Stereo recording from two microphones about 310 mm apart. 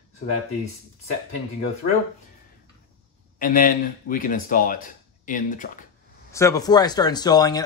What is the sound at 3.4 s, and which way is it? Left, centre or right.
Speech, left.